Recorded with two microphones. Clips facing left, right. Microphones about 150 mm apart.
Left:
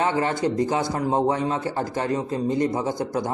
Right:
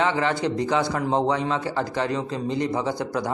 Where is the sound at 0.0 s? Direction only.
45° left (ahead or behind).